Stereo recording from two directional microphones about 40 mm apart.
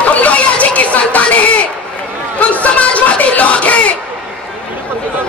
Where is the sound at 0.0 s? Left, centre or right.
Left.